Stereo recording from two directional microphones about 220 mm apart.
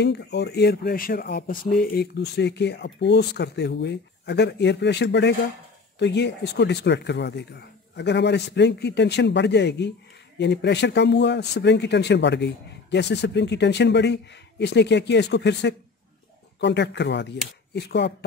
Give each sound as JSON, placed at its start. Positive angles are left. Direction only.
{"t": 0.0, "sound": "speech", "side_deg": 50}